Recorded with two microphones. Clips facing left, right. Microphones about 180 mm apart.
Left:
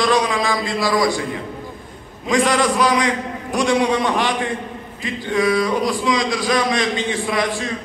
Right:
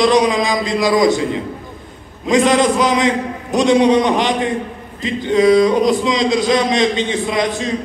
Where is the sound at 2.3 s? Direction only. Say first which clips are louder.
Right 4 dB; 20° right (ahead or behind).